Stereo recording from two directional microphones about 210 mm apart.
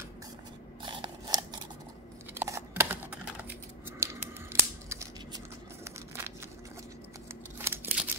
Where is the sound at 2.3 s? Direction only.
15° right (ahead or behind).